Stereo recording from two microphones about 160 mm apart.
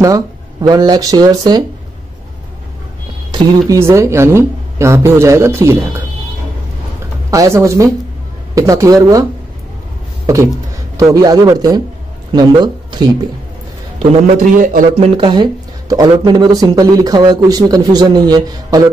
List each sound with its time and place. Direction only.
0.0 s speech: 25° right (ahead or behind)
3.3 s speech: 20° right (ahead or behind)
7.2 s speech: 20° right (ahead or behind)
10.2 s speech: 20° right (ahead or behind)
14.2 s a man's voice: 55° right (ahead or behind)
15.0 s speech: 30° right (ahead or behind)